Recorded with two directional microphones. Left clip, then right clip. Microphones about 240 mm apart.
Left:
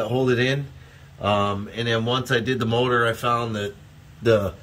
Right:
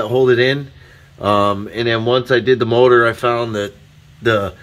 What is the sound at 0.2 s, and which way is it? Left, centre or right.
Speech, right.